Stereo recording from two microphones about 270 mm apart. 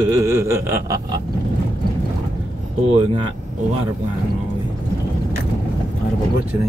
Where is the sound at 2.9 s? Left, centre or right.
Centre.